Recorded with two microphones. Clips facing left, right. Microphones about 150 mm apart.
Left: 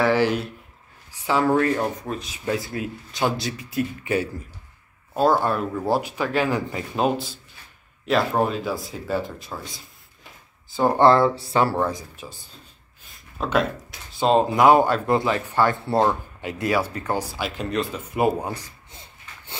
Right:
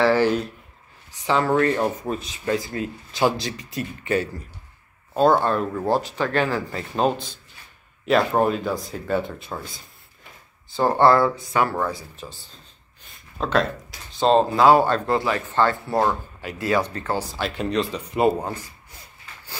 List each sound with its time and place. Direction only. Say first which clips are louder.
0.0 s speech: right 1 dB; 10° left (ahead or behind)
6.5 s speech: left 1 dB; 20° left (ahead or behind)
7.0 s speech: right 1 dB; 5° left (ahead or behind)
8.4 s speech: right 2 dB; centre (ahead or behind)
10.8 s speech: left 1 dB; 15° left (ahead or behind)
11.3 s speech: left 2 dB; 30° left (ahead or behind)
11.9 s speech: even; 10° left (ahead or behind)
13.0 s a sound: right 1 dB; 5° left (ahead or behind)
14.5 s speech: even; 20° left (ahead or behind)
16.7 s speech: right 2 dB; 10° left (ahead or behind)
18.9 s a sound: even; 25° left (ahead or behind)